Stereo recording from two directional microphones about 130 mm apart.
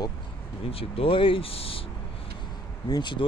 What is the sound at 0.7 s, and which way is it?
Speech, 45° left (ahead or behind).